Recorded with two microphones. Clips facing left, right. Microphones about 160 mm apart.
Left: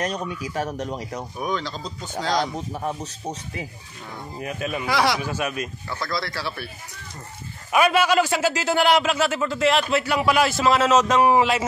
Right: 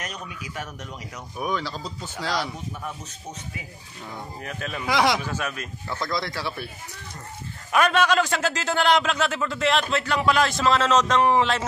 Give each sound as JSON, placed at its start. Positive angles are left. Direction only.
{"t": 0.0, "sound": "speech", "side_deg": 35}
{"t": 1.4, "sound": "speech", "side_deg": -5}
{"t": 2.5, "sound": "speech", "side_deg": 35}
{"t": 4.4, "sound": "a man's voice", "side_deg": 15}
{"t": 4.8, "sound": "speech", "side_deg": -20}
{"t": 5.2, "sound": "a man's voice", "side_deg": 10}
{"t": 5.9, "sound": "speech", "side_deg": -20}
{"t": 7.7, "sound": "a man's voice", "side_deg": 10}